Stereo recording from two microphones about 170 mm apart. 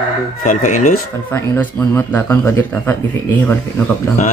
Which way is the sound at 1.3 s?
10° left (ahead or behind).